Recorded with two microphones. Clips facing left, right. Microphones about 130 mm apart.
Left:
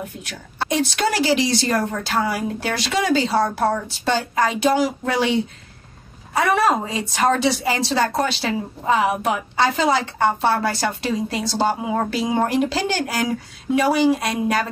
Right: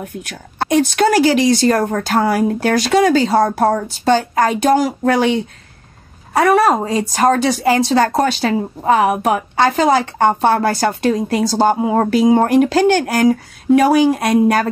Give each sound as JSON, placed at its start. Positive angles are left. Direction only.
{"t": 0.0, "sound": "a woman's voice", "side_deg": -50}
{"t": 6.3, "sound": "a woman's voice", "side_deg": -45}